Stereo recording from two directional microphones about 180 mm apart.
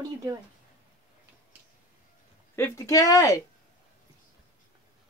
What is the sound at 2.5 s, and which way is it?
Speech, 15° left (ahead or behind).